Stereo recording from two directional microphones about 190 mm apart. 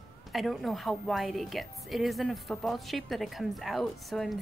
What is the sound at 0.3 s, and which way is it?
A woman's voice, centre (ahead or behind).